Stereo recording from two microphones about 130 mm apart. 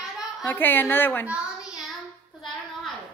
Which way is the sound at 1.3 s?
5° right (ahead or behind).